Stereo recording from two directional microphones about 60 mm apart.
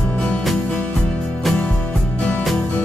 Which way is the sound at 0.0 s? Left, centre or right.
Centre.